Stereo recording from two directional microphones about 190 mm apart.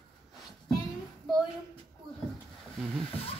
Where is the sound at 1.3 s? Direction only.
25° left (ahead or behind).